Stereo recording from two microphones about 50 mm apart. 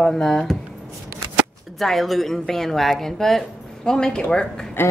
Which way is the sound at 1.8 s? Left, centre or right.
Centre.